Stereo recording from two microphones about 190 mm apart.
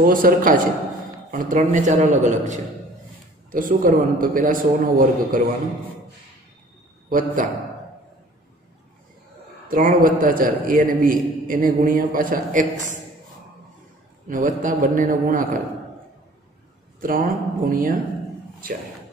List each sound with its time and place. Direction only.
0.0 s a man's voice: 50° right (ahead or behind)
7.1 s a man's voice: 45° right (ahead or behind)
9.7 s a man's voice: 50° right (ahead or behind)
14.3 s a man's voice: 45° right (ahead or behind)
17.0 s a man's voice: 50° right (ahead or behind)